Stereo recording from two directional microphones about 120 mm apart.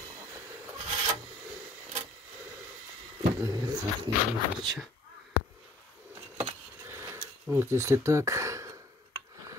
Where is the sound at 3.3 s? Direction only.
30° right (ahead or behind).